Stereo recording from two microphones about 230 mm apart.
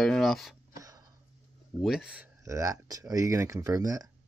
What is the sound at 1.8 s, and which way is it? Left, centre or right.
Speech, centre.